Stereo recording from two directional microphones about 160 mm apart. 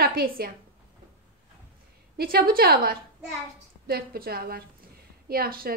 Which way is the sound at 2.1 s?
70° right (ahead or behind).